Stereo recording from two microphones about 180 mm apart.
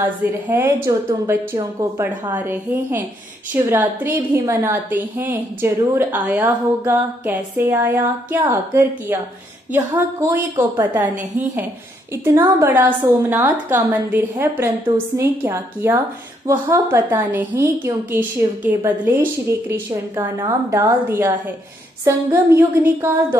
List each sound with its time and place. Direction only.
0.0 s a woman's voice: 10° right (ahead or behind)